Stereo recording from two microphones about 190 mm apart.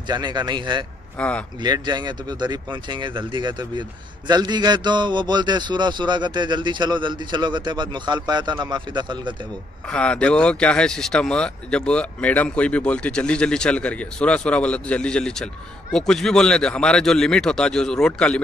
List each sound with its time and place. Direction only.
0.1 s a man's voice: 20° right (ahead or behind)
1.1 s speech: 5° left (ahead or behind)
1.6 s a man's voice: 20° right (ahead or behind)
9.8 s speech: 5° left (ahead or behind)